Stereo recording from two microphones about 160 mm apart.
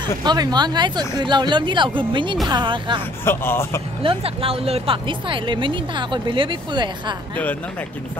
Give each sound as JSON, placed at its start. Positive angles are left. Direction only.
{"t": 0.0, "sound": "speech", "side_deg": -25}
{"t": 3.3, "sound": "a man's voice", "side_deg": 15}
{"t": 4.0, "sound": "speech", "side_deg": -35}